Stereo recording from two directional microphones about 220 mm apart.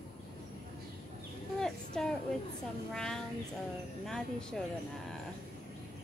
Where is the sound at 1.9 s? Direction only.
5° left (ahead or behind).